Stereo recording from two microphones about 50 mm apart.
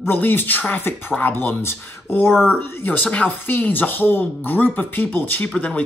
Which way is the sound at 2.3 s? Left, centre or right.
Centre.